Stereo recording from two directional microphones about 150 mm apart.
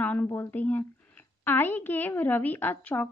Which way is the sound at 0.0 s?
10° left (ahead or behind).